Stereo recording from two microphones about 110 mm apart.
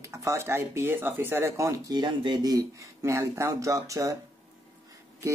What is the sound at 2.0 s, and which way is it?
Speech, 45° right (ahead or behind).